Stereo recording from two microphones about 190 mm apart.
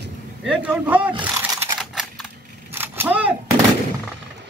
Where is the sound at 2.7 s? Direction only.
10° right (ahead or behind).